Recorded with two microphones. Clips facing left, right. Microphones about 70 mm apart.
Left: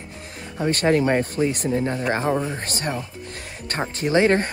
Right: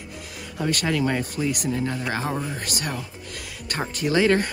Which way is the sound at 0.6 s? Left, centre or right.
Left.